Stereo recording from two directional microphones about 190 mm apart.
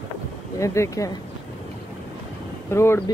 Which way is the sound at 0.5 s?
15° left (ahead or behind).